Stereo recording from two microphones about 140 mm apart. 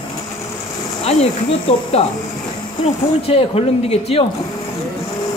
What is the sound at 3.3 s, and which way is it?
Speech, 40° left (ahead or behind).